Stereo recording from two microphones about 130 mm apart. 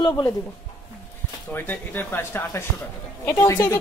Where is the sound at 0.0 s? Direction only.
25° left (ahead or behind).